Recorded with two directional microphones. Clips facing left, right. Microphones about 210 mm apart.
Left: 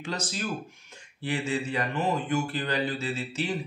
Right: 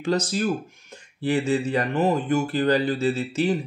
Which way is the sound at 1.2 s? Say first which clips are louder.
Right 7 dB; 40° right (ahead or behind).